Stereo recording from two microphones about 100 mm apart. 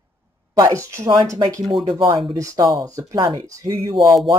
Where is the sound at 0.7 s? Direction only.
30° right (ahead or behind).